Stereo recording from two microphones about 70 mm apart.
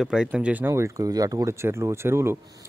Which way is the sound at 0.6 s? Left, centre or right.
Right.